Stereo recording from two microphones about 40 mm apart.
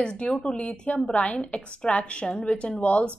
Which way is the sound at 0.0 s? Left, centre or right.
Left.